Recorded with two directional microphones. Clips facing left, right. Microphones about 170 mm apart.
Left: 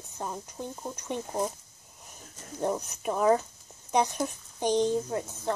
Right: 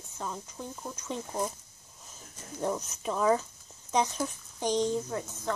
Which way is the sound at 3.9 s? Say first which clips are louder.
Left 2 dB; 15° left (ahead or behind).